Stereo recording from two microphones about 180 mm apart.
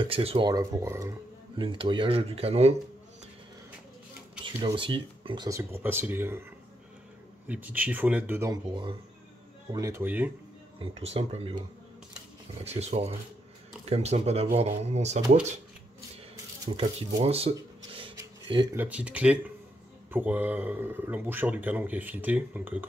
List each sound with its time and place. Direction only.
0.0 s speech: 30° right (ahead or behind)
0.5 s speech: 20° right (ahead or behind)
1.6 s speech: 25° right (ahead or behind)
4.6 s speech: 25° right (ahead or behind)
5.6 s a man's voice: 10° right (ahead or behind)
7.4 s a man's voice: 10° right (ahead or behind)
9.8 s a man's voice: 15° right (ahead or behind)
10.8 s speech: 35° right (ahead or behind)
12.6 s speech: 35° right (ahead or behind)
16.7 s speech: 35° right (ahead or behind)
18.8 s a man's voice: 5° right (ahead or behind)